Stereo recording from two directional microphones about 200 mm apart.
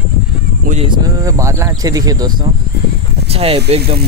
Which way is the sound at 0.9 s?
20° right (ahead or behind).